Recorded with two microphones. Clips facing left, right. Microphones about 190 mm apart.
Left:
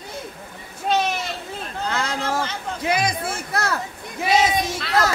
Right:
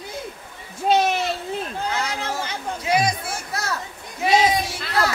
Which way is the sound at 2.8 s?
60° left (ahead or behind).